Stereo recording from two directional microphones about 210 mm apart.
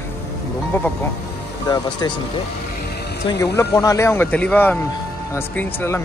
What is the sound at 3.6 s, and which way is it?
Speech, 15° left (ahead or behind).